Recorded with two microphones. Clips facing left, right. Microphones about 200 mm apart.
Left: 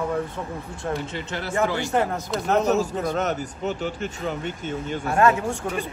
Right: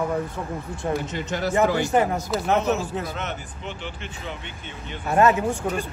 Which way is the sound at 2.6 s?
40° left (ahead or behind).